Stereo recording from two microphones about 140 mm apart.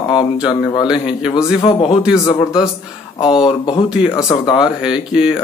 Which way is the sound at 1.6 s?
40° left (ahead or behind).